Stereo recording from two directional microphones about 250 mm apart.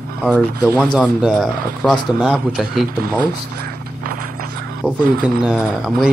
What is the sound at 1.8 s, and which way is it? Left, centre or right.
Speech, centre.